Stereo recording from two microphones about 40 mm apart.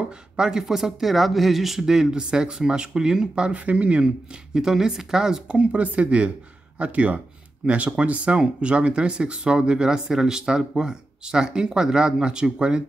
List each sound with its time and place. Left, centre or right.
0.4 s speech: centre
3.5 s speech: right
4.6 s speech: centre
5.6 s speech: right